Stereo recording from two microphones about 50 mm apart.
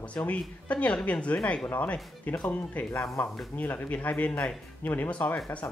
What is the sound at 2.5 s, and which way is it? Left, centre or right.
Speech, left.